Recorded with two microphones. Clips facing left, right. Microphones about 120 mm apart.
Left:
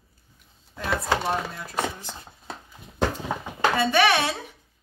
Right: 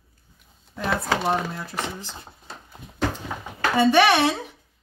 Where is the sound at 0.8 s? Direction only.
25° right (ahead or behind).